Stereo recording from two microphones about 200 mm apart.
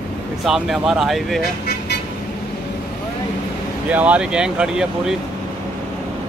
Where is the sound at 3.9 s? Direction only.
5° right (ahead or behind).